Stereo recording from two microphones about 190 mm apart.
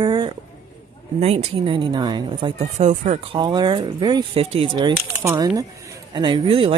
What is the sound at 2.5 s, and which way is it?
Speech, 40° right (ahead or behind).